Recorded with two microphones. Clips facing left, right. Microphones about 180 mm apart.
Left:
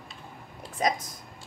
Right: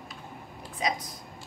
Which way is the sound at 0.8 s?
45° left (ahead or behind).